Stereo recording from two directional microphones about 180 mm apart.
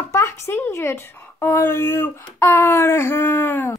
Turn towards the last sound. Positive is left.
turn(degrees=10)  # may be behind; listen again after turning